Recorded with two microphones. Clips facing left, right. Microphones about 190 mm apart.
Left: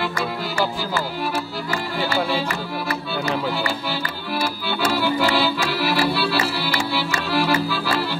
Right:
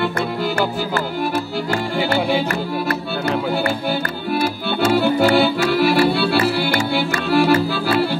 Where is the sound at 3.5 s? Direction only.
55° right (ahead or behind).